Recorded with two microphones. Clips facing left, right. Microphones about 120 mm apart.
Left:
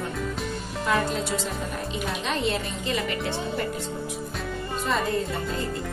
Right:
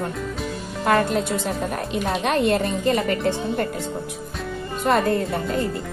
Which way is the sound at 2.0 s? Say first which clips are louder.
Right 8 dB; 55° right (ahead or behind).